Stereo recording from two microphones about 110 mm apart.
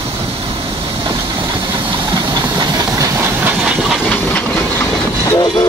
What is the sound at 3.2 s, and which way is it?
Train, 15° right (ahead or behind).